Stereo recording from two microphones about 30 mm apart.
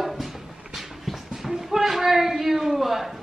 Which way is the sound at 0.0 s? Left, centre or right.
Centre.